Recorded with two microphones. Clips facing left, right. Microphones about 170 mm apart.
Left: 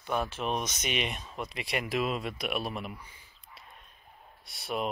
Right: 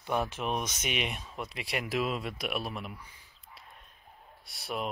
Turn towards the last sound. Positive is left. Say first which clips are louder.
# left 2 dB
turn(degrees=0)  # may be behind; listen again after turning